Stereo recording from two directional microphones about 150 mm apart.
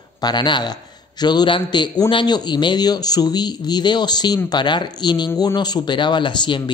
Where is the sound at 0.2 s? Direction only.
30° left (ahead or behind).